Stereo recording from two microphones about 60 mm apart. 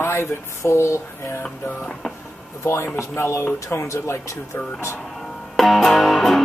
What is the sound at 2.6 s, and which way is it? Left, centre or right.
A man's voice, left.